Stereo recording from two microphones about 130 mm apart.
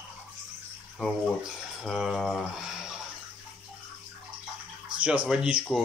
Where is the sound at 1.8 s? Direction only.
Centre (ahead or behind).